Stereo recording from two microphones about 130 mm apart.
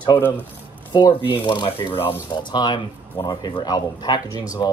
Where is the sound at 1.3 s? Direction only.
40° left (ahead or behind).